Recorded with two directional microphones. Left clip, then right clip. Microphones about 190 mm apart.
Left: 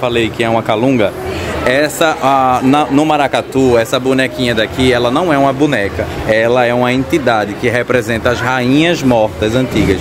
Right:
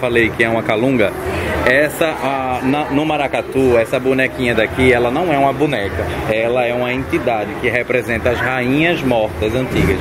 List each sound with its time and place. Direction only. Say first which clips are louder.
0.0 s speech: even; 15° left (ahead or behind)
5.1 s speech: left 3 dB; 30° left (ahead or behind)
6.4 s speech: left 5 dB; 45° left (ahead or behind)
7.7 s speech: left 3 dB; 25° left (ahead or behind)